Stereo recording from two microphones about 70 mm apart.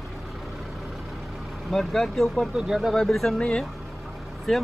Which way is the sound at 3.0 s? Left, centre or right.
Centre.